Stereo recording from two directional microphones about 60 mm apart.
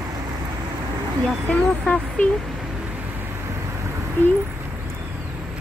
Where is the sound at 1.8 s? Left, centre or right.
Left.